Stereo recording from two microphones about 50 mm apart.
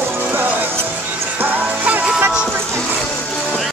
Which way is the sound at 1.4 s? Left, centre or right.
Right.